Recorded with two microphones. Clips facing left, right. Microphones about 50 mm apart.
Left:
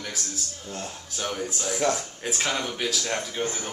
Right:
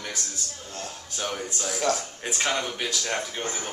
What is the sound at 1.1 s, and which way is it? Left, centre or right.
Speech, centre.